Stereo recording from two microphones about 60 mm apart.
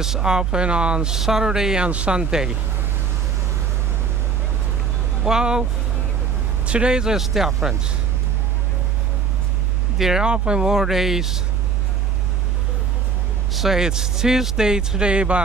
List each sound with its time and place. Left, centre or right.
0.0 s speech: centre
5.2 s speech: centre
9.9 s speech: centre
10.2 s speech: centre
13.5 s speech: centre